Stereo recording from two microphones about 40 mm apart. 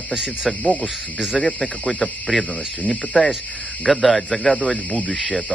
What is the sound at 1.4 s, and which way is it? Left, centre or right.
Speech, left.